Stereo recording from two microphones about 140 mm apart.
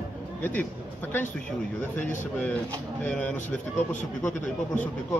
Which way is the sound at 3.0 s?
10° left (ahead or behind).